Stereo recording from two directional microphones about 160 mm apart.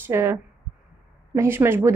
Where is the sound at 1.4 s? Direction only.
15° right (ahead or behind).